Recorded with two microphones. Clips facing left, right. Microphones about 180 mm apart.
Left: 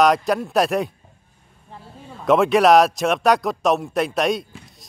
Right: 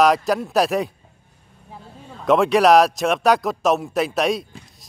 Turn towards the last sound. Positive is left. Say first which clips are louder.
# even
turn(degrees=0)  # may be behind; listen again after turning